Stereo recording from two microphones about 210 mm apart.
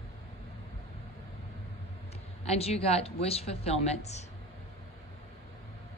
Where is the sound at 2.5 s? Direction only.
30° left (ahead or behind).